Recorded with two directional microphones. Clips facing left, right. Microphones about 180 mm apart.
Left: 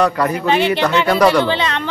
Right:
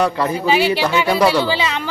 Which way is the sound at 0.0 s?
25° right (ahead or behind).